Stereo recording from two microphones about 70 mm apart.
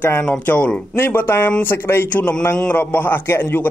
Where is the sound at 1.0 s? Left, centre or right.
Left.